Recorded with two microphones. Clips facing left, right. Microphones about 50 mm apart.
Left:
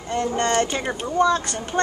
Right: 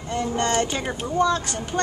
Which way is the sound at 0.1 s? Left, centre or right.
Centre.